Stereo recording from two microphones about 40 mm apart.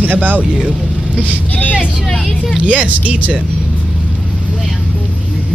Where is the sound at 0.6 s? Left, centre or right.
Right.